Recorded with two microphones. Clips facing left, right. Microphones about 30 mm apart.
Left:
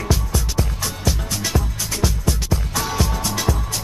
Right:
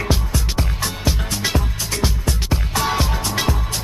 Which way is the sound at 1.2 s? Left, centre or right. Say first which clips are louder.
Right 2 dB; right.